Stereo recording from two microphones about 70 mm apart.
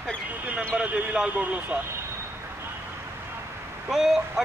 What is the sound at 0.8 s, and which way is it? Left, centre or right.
Speech, centre.